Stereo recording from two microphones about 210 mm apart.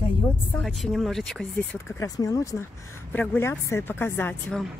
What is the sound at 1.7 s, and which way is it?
Speech, 15° left (ahead or behind).